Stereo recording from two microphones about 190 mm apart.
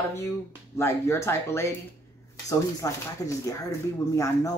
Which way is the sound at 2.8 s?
20° left (ahead or behind).